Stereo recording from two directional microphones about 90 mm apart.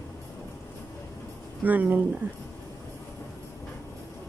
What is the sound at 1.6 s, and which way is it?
Speech, 20° right (ahead or behind).